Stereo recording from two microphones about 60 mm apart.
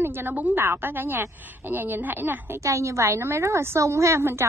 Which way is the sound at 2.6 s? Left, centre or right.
Right.